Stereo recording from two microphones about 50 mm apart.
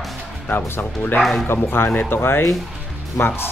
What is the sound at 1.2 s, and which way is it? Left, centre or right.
Speech, centre.